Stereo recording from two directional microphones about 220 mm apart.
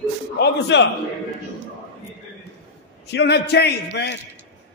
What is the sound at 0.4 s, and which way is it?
Speech, 50° left (ahead or behind).